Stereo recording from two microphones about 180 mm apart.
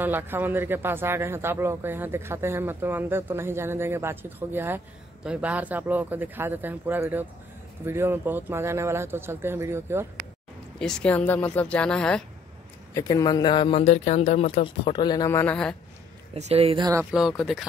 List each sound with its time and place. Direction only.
0.0 s a man's voice: 10° right (ahead or behind)
10.8 s speech: 5° left (ahead or behind)
12.9 s speech: 20° left (ahead or behind)
16.3 s a woman's voice: 35° right (ahead or behind)
17.0 s speech: centre (ahead or behind)